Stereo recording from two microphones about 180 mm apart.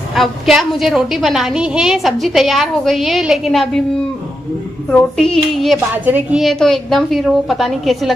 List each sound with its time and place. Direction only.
0.1 s a woman's voice: centre (ahead or behind)
4.9 s a woman's voice: 5° left (ahead or behind)